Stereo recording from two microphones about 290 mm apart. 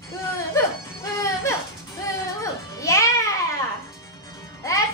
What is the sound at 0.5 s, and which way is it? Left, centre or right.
Music, centre.